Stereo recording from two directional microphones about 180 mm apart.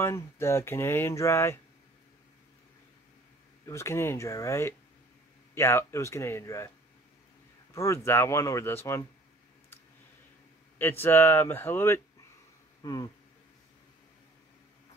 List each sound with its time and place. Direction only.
0.0 s speech: 15° left (ahead or behind)
3.6 s speech: 15° left (ahead or behind)
7.7 s speech: 15° left (ahead or behind)
10.8 s speech: 10° left (ahead or behind)